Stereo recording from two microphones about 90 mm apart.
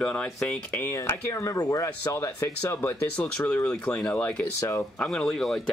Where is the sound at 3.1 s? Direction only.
15° left (ahead or behind).